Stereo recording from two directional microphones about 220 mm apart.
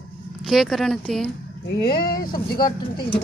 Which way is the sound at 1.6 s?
45° left (ahead or behind).